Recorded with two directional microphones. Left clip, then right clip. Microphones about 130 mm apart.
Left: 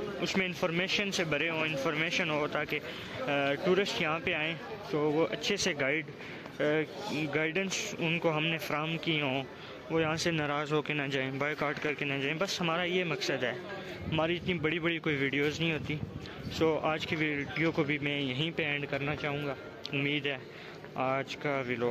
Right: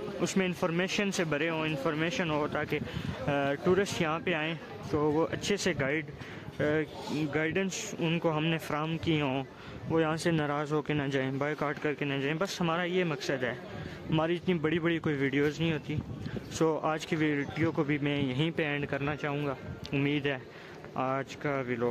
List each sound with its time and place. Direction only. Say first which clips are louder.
0.4 s speech: right 1 dB; 55° right (ahead or behind); by 1.2 s 75° right (ahead or behind)
1.2 s speech: even; 55° right (ahead or behind)
3.3 s speech: even; 55° right (ahead or behind)
10.5 s speech: even; 35° right (ahead or behind)
14.1 s speech: right 1 dB; 55° right (ahead or behind)
16.5 s speech: even; 60° right (ahead or behind)
21.0 s speech: even; 45° right (ahead or behind)